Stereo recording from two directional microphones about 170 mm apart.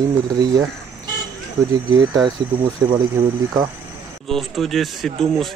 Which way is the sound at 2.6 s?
30° right (ahead or behind).